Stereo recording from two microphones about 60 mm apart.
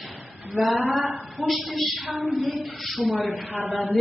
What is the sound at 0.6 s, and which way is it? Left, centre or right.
A woman's voice, centre.